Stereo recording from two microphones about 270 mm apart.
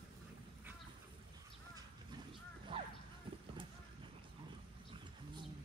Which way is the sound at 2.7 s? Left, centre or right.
Centre.